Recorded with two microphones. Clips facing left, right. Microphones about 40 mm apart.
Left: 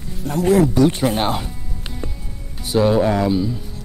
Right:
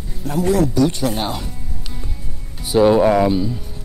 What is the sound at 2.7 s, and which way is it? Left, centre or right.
Speech, centre.